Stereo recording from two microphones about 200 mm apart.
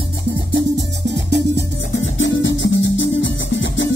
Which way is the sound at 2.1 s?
65° left (ahead or behind).